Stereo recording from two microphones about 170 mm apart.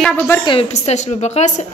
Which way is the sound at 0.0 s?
10° left (ahead or behind).